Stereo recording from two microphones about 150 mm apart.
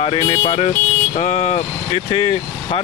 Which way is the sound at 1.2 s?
50° left (ahead or behind).